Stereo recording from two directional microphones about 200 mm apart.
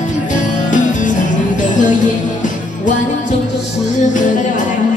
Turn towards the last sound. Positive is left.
turn(degrees=40)  # may be behind; listen again after turning